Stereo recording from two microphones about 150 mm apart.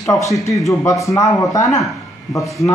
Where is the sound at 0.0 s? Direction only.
25° left (ahead or behind).